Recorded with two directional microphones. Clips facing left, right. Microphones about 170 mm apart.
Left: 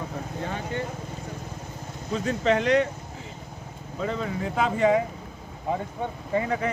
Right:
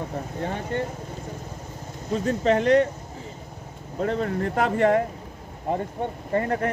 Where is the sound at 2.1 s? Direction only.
40° right (ahead or behind).